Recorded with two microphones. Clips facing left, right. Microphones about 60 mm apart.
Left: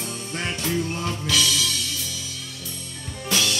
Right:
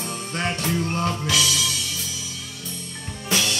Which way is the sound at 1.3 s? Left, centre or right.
Centre.